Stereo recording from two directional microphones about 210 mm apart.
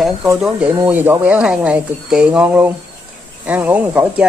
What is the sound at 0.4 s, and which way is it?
Speech, 5° right (ahead or behind).